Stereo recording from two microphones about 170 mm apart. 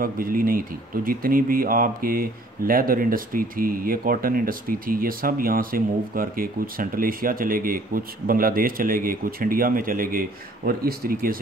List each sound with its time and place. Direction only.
0.0 s speech: 55° right (ahead or behind)